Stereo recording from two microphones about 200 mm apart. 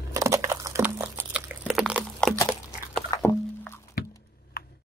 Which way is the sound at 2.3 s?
5° left (ahead or behind).